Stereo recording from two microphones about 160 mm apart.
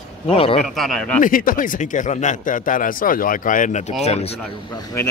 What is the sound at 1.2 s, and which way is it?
A man's voice, 60° left (ahead or behind).